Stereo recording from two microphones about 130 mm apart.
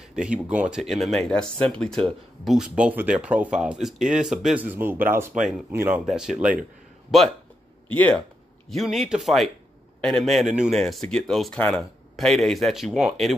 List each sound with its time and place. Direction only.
0.0 s speech: 5° right (ahead or behind)
5.3 s speech: 5° right (ahead or behind)
5.7 s speech: 15° right (ahead or behind)
6.0 s speech: 5° right (ahead or behind)
7.9 s speech: 10° left (ahead or behind)
8.6 s speech: centre (ahead or behind)